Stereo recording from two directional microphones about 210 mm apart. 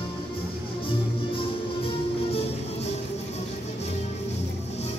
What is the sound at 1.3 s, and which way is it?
Music, 25° left (ahead or behind).